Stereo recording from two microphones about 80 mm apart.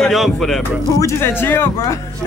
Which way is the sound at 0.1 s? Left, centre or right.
Centre.